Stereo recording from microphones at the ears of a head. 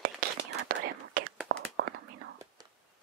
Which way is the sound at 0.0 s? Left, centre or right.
Right.